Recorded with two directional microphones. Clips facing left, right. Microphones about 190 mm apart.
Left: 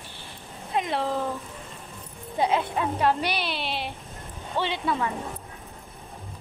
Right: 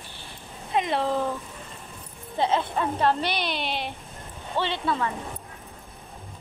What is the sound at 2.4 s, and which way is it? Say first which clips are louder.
Speech: even; 10° left (ahead or behind).